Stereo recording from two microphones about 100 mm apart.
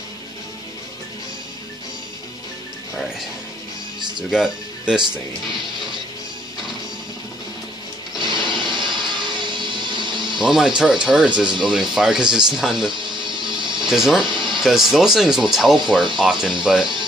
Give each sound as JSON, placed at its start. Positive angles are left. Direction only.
{"t": 4.3, "sound": "speech", "side_deg": -5}
{"t": 8.2, "sound": "music", "side_deg": -50}
{"t": 10.4, "sound": "speech", "side_deg": -5}
{"t": 13.0, "sound": "music", "side_deg": -50}
{"t": 13.7, "sound": "speech", "side_deg": -5}
{"t": 14.2, "sound": "speech", "side_deg": -50}
{"t": 14.5, "sound": "speech", "side_deg": -5}